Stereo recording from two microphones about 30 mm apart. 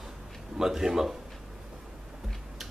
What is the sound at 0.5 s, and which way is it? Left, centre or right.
Speech, centre.